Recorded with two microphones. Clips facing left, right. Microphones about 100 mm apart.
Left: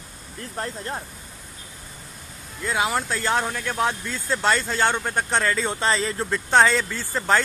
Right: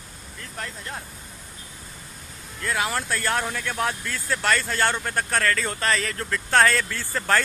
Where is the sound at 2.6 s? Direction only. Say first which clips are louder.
Left 2 dB; 15° left (ahead or behind).